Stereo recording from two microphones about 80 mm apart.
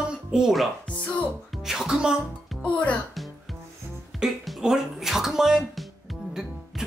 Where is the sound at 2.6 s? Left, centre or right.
Centre.